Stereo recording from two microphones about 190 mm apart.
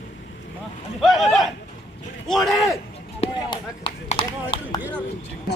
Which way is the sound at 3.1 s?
30° left (ahead or behind).